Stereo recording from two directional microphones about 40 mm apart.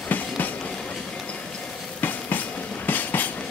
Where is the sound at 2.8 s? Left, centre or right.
Left.